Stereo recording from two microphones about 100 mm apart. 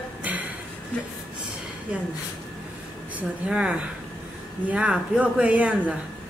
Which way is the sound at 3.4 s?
10° right (ahead or behind).